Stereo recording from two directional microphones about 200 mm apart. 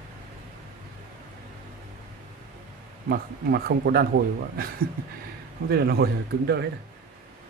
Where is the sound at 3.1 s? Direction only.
55° right (ahead or behind).